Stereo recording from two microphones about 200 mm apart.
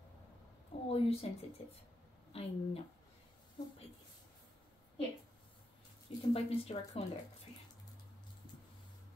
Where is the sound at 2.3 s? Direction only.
30° left (ahead or behind).